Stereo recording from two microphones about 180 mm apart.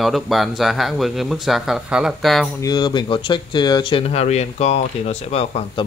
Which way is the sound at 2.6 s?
25° left (ahead or behind).